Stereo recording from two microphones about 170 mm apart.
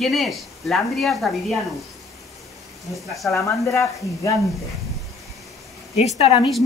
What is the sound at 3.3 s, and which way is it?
Speech, 15° left (ahead or behind).